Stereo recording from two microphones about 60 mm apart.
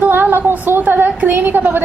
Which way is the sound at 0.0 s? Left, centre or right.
Right.